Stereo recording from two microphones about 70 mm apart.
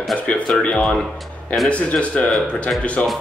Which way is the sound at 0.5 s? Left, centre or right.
Centre.